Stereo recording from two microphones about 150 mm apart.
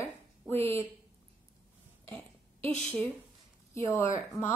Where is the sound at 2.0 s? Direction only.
35° right (ahead or behind).